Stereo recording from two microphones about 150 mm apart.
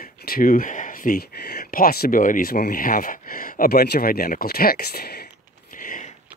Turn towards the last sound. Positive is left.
turn(degrees=65)  # may be behind; listen again after turning